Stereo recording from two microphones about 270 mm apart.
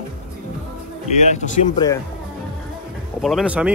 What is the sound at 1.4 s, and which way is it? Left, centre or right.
Speech, centre.